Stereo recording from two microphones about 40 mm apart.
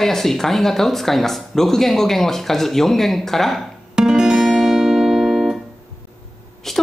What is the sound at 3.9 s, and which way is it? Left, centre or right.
Music, centre.